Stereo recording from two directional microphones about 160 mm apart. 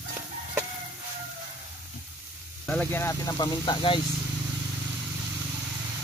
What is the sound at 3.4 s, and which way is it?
Speech, 30° left (ahead or behind).